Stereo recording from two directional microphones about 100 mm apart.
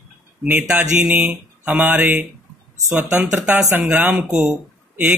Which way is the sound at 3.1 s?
10° right (ahead or behind).